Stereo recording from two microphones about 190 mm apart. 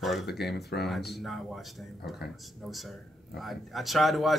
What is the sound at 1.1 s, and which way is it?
Speech, centre (ahead or behind).